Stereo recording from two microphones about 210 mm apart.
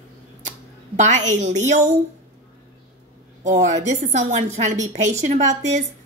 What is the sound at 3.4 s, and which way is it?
A woman's voice, 35° right (ahead or behind).